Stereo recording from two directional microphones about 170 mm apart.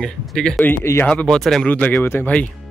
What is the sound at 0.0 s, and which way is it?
Speech, 5° left (ahead or behind).